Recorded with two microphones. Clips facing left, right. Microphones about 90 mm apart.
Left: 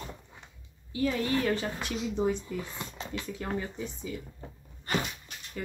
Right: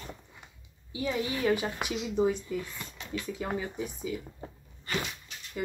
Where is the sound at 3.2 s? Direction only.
5° right (ahead or behind).